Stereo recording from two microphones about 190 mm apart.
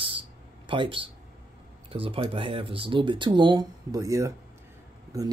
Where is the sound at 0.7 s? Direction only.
30° right (ahead or behind).